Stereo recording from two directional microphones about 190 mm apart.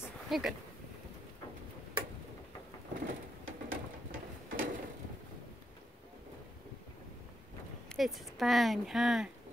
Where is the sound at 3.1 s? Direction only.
45° right (ahead or behind).